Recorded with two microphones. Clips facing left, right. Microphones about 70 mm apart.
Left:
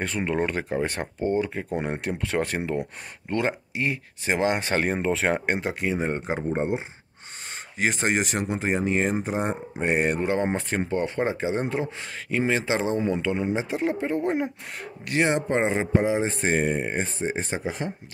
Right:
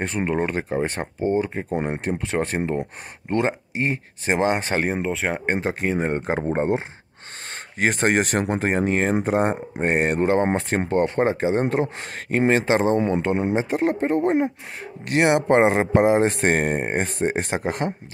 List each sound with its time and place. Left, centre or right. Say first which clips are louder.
0.0 s speech: right 2 dB; right
4.8 s speech: even; centre
5.5 s speech: right 3 dB; right
7.8 s speech: right 4 dB; right
15.2 s speech: right 8 dB; right